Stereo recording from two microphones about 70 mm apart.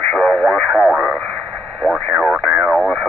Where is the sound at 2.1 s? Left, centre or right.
Centre.